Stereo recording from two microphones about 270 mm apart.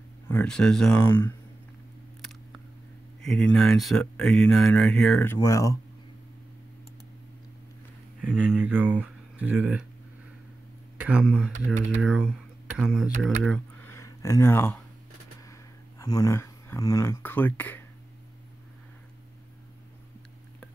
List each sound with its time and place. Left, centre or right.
0.3 s speech: centre
3.2 s a sound: centre
3.5 s speech: centre
8.2 s speech: centre
11.0 s speech: centre
16.0 s speech: centre